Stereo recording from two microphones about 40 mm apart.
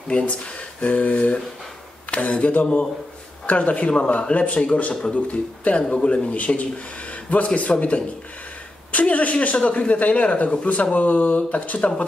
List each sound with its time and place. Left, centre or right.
0.1 s speech: left
8.9 s speech: left